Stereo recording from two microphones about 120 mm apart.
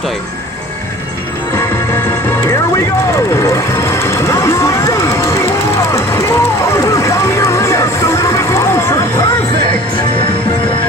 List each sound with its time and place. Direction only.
3.3 s music: 25° left (ahead or behind)